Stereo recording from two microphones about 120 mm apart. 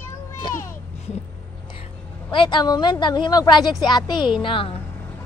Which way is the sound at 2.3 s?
40° left (ahead or behind).